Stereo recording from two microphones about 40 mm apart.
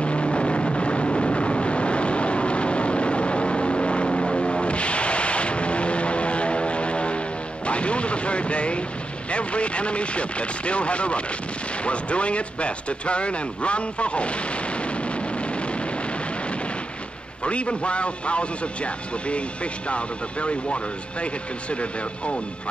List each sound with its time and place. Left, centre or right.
0.0 s vehicle: left
9.3 s a man's voice: left
17.4 s a man's voice: left